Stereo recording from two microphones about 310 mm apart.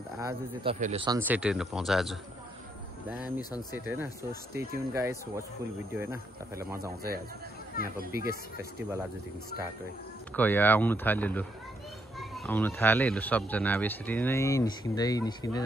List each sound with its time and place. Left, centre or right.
0.2 s speech: right; by 2.1 s centre
3.3 s speech: centre
3.7 s speech: centre
7.8 s speech: right
10.3 s speech: centre